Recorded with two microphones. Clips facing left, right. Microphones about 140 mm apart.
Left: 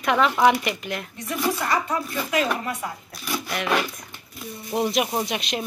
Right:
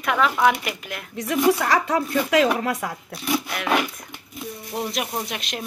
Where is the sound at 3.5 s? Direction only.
10° right (ahead or behind).